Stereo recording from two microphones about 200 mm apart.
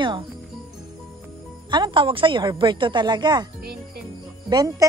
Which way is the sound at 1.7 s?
20° right (ahead or behind).